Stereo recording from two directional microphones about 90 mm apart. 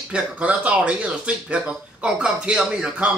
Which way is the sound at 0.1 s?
15° right (ahead or behind).